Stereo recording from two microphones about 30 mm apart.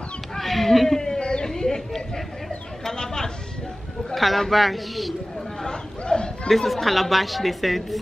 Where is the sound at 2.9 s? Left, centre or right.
Left.